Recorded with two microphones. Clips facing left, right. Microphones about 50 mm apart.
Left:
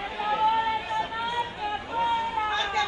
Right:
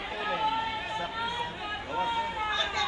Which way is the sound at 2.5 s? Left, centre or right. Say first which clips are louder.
Left 3 dB; left.